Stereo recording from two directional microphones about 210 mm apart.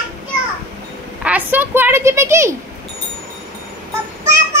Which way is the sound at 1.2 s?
10° right (ahead or behind).